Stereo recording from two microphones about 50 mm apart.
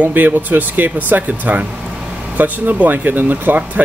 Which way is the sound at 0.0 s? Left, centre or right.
Right.